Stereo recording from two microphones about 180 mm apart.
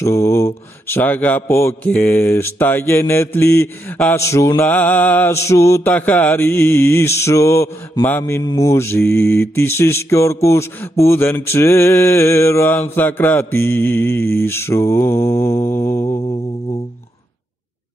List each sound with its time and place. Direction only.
0.0 s mantra: 15° left (ahead or behind)
0.8 s speech: 10° left (ahead or behind)
15.8 s mantra: 30° left (ahead or behind)